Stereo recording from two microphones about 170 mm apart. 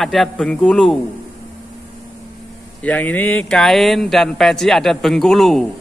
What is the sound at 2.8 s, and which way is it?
A man's voice, 10° left (ahead or behind).